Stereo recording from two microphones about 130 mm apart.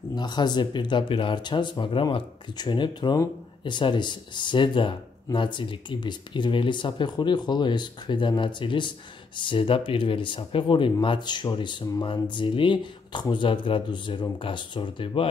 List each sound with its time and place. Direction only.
0.1 s speech: 35° left (ahead or behind)